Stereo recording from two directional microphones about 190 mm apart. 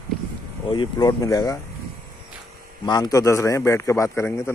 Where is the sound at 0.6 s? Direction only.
25° left (ahead or behind).